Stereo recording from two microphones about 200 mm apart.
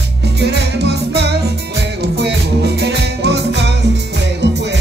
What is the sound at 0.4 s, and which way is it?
Music, 55° right (ahead or behind).